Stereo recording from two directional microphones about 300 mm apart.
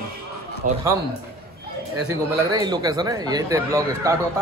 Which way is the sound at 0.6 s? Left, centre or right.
Right.